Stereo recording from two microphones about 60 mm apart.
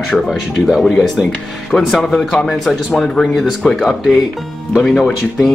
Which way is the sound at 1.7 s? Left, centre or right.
Centre.